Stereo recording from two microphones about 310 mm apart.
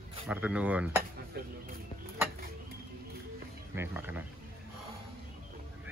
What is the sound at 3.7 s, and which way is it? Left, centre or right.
Speech, centre.